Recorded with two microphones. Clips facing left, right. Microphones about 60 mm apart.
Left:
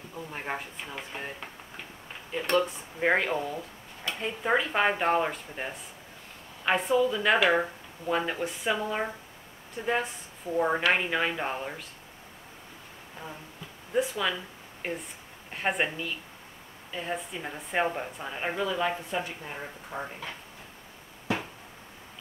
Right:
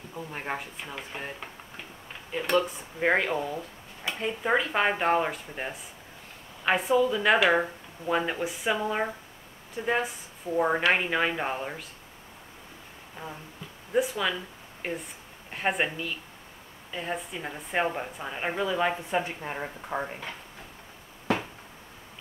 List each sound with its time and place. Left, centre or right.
0.1 s speech: centre
13.9 s speech: centre
18.8 s speech: right